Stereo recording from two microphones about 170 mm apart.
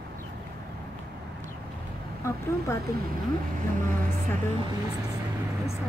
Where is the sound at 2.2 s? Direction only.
15° left (ahead or behind).